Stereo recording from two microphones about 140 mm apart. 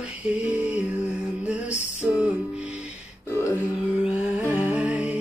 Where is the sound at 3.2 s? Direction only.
20° left (ahead or behind).